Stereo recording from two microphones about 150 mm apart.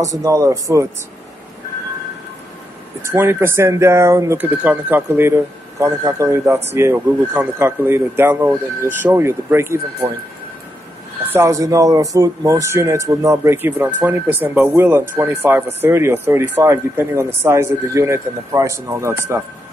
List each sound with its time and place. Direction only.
0.2 s speech: 20° right (ahead or behind)
3.1 s speech: 15° right (ahead or behind)
11.3 s speech: 20° right (ahead or behind)